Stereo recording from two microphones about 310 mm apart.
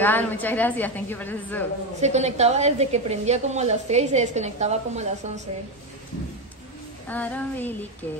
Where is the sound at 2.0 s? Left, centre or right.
Right.